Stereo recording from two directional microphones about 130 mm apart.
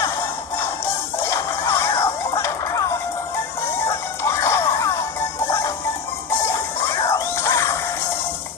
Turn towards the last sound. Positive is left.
turn(degrees=20)  # may be behind; listen again after turning